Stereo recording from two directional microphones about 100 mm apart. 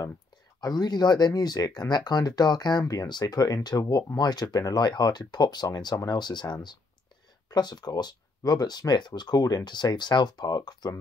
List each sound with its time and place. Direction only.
0.6 s speech: 40° left (ahead or behind)